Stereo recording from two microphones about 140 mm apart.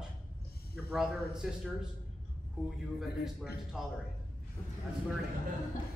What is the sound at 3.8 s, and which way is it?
Speech, 5° right (ahead or behind).